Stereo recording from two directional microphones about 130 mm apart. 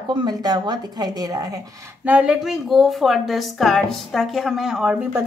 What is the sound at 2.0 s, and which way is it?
A woman's voice, 10° right (ahead or behind).